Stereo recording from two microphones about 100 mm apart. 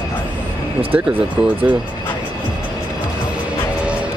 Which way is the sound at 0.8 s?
15° right (ahead or behind).